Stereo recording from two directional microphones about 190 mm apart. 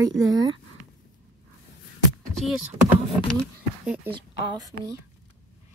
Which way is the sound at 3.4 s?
5° right (ahead or behind).